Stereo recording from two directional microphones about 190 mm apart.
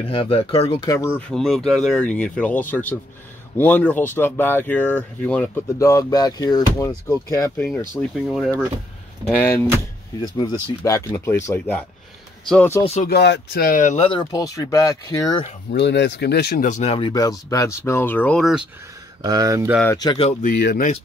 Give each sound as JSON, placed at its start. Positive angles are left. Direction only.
{"t": 0.0, "sound": "speech", "side_deg": 30}
{"t": 0.8, "sound": "speech", "side_deg": 15}
{"t": 1.3, "sound": "speech", "side_deg": 0}
{"t": 10.2, "sound": "speech", "side_deg": 25}
{"t": 13.0, "sound": "speech", "side_deg": 60}
{"t": 14.0, "sound": "speech", "side_deg": 25}
{"t": 15.7, "sound": "speech", "side_deg": 65}
{"t": 19.2, "sound": "speech", "side_deg": -20}
{"t": 19.9, "sound": "speech", "side_deg": 20}
{"t": 20.2, "sound": "speech", "side_deg": 50}